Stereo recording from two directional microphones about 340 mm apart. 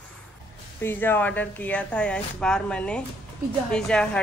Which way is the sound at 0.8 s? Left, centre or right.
Centre.